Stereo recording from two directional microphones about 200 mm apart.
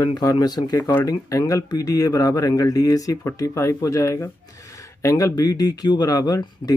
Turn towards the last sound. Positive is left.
turn(degrees=20)  # may be behind; listen again after turning